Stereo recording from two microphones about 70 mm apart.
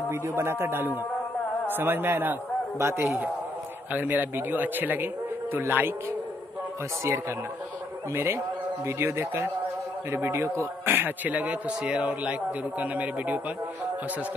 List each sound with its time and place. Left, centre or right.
0.4 s speech: right
3.9 s a man's voice: right
8.1 s a man's voice: right